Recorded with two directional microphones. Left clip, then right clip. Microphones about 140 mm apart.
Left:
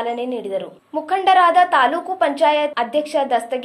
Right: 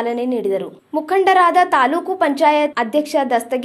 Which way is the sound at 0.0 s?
30° right (ahead or behind).